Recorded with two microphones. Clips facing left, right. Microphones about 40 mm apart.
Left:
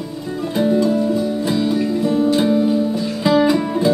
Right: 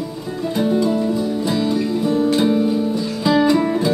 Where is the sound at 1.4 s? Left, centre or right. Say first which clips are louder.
Left 1 dB; centre.